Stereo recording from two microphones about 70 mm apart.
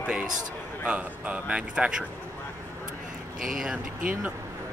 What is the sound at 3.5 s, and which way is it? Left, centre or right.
Speech, centre.